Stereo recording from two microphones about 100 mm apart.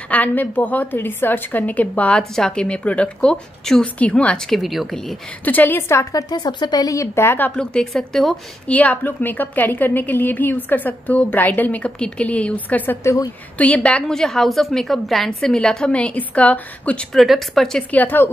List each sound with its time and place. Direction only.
0.1 s a woman's voice: 15° left (ahead or behind)
5.4 s a woman's voice: 15° left (ahead or behind)
6.2 s a woman's voice: 40° left (ahead or behind); by 8.7 s 5° left (ahead or behind)
8.7 s a woman's voice: 15° left (ahead or behind)
17.9 s a woman's voice: 20° left (ahead or behind)